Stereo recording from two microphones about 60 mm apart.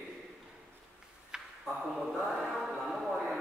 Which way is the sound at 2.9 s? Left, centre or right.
Centre.